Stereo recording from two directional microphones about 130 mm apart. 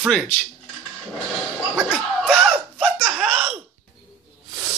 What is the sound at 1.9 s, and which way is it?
Speech, 10° right (ahead or behind).